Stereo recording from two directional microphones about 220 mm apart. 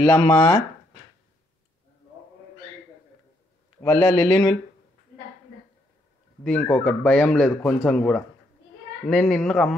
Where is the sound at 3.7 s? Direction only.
10° left (ahead or behind).